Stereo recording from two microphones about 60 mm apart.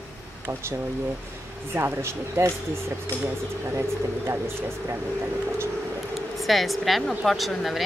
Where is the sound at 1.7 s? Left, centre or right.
Right.